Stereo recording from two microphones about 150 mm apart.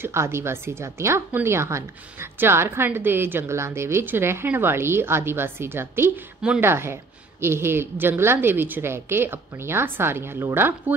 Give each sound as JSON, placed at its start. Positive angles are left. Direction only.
{"t": 0.0, "sound": "a woman's voice", "side_deg": -20}